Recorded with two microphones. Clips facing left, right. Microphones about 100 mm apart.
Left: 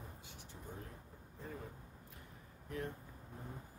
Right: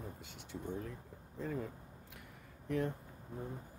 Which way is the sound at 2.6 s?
90° right.